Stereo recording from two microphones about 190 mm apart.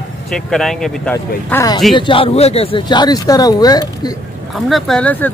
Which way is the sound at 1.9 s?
25° left (ahead or behind).